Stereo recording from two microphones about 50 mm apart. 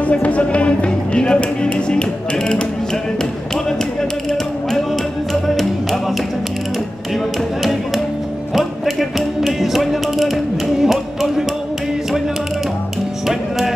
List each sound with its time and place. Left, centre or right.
0.1 s speech: left
9.4 s music: centre